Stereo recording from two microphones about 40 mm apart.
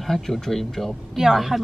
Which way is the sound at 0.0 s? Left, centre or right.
Centre.